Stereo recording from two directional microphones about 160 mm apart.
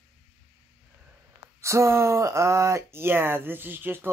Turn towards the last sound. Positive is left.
turn(degrees=-15)  # may be behind; listen again after turning